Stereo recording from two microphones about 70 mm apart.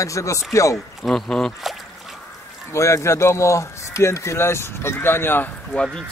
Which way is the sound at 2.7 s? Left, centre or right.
Left.